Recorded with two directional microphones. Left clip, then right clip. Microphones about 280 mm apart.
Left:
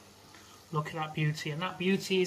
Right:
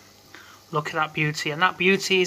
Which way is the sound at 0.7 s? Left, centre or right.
Centre.